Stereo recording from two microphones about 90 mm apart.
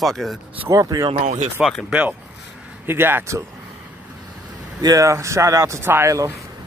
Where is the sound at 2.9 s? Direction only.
25° right (ahead or behind).